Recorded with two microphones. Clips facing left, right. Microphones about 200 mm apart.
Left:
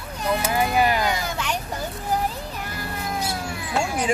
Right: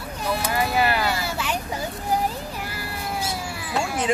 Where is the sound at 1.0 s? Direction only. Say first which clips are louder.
Even; 5° right (ahead or behind).